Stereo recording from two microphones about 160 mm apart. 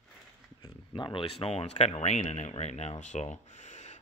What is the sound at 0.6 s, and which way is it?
Speech, 30° left (ahead or behind).